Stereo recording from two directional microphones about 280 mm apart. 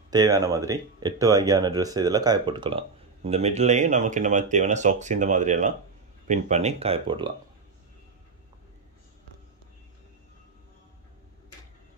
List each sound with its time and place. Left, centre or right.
0.1 s speech: centre